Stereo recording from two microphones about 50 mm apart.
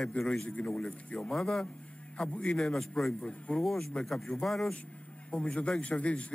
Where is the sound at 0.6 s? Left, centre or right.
Centre.